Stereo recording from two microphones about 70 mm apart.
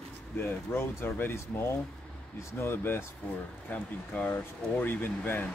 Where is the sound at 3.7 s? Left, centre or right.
Left.